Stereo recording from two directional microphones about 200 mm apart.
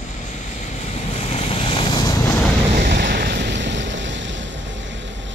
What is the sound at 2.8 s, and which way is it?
Waves, 50° right (ahead or behind).